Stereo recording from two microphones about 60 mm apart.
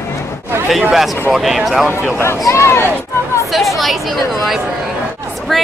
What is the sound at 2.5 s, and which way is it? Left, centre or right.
Speech, left.